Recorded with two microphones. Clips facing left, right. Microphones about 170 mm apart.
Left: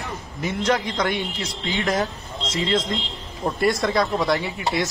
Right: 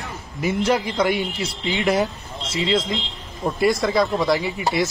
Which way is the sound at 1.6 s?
15° right (ahead or behind).